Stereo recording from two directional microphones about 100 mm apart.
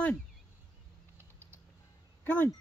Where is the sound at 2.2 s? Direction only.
20° left (ahead or behind).